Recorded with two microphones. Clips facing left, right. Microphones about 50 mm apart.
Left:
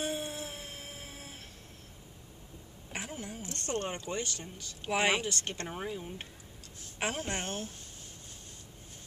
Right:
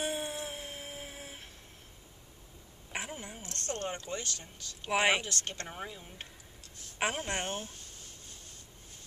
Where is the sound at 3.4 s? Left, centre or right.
Left.